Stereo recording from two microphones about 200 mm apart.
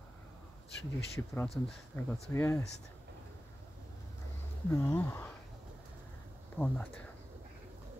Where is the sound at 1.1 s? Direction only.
10° left (ahead or behind).